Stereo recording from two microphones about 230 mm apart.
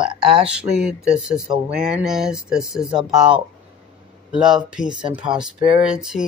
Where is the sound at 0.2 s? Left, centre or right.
Right.